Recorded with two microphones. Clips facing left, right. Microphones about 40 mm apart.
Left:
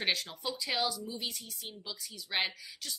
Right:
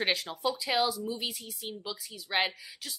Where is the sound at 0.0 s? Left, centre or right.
Centre.